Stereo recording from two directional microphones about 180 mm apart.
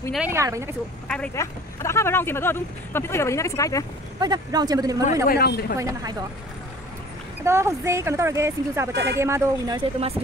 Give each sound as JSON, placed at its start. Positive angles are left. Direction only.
{"t": 0.3, "sound": "speech", "side_deg": -15}
{"t": 1.0, "sound": "speech", "side_deg": 5}
{"t": 1.3, "sound": "speech", "side_deg": 15}
{"t": 4.2, "sound": "speech", "side_deg": -20}
{"t": 5.3, "sound": "speech", "side_deg": 60}
{"t": 5.8, "sound": "speech", "side_deg": -20}
{"t": 7.4, "sound": "speech", "side_deg": -15}
{"t": 9.8, "sound": "speech", "side_deg": -35}